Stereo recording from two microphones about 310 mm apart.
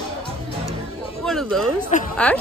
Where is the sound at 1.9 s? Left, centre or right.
Left.